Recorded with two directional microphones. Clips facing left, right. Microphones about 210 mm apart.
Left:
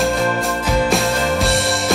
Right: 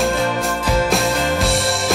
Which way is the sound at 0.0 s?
Centre (ahead or behind).